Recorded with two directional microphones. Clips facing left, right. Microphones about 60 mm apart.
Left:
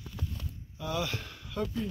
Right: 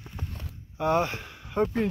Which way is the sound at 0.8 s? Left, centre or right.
Right.